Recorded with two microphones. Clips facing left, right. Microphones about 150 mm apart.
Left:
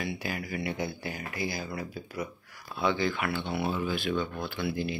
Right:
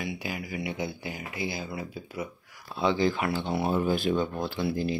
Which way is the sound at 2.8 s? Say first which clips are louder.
Right 3 dB; 30° right (ahead or behind).